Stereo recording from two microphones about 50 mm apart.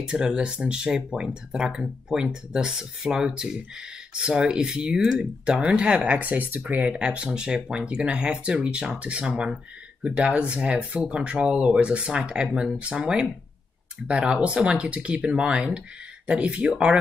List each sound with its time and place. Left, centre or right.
0.0 s speech: centre
4.9 s speech: centre
5.4 s speech: centre